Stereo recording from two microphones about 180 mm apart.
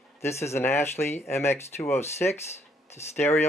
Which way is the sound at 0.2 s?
15° left (ahead or behind).